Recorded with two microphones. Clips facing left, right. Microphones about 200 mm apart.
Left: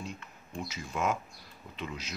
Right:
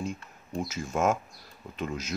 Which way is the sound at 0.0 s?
45° right (ahead or behind).